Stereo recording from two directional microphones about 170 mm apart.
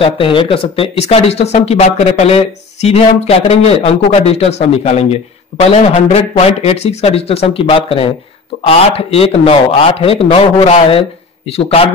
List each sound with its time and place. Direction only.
0.0 s speech: 30° left (ahead or behind)